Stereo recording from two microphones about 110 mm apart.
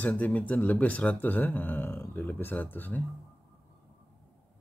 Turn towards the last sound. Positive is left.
turn(degrees=15)  # may be behind; listen again after turning